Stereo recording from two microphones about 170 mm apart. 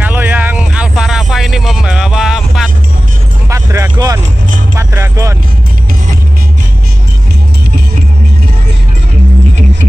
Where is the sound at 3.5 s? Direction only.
15° right (ahead or behind).